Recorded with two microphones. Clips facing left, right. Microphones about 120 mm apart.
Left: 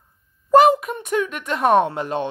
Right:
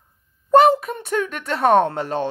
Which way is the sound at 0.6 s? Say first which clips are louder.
Even; 30° right (ahead or behind).